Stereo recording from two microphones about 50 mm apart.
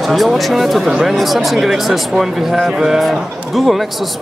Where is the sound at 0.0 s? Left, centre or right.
Centre.